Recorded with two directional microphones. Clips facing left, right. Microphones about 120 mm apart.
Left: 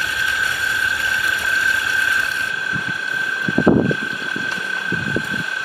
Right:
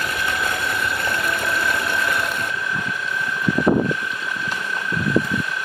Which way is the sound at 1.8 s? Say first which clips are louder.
Even; 25° right (ahead or behind).